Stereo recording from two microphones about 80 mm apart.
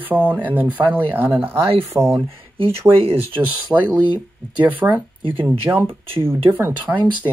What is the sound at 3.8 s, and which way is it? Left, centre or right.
Speech, centre.